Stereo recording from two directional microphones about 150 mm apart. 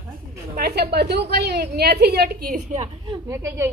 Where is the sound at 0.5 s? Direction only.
90° right.